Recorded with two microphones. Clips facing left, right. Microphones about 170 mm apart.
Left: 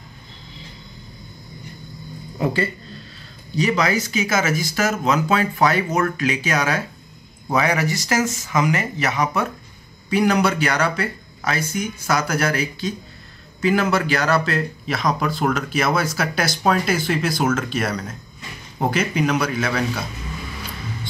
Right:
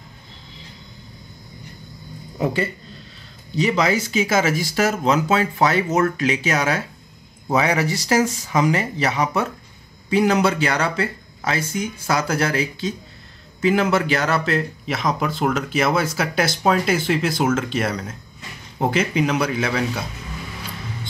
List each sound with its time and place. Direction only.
2.3 s speech: 15° right (ahead or behind)
3.5 s speech: 25° right (ahead or behind)